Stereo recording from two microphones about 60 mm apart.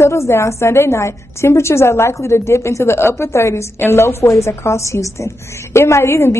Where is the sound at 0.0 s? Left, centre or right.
Left.